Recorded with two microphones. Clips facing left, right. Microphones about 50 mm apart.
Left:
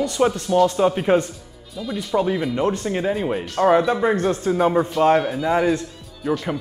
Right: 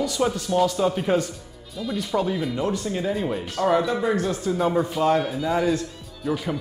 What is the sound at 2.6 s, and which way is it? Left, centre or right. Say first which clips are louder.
Speech: left 4 dB; left.